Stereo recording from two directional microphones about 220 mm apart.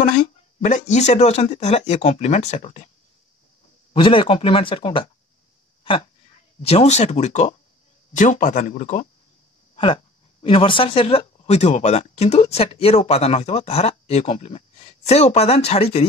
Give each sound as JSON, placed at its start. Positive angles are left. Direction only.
{"t": 0.6, "sound": "speech", "side_deg": 35}
{"t": 3.9, "sound": "speech", "side_deg": 25}
{"t": 6.6, "sound": "speech", "side_deg": 30}
{"t": 10.4, "sound": "speech", "side_deg": 25}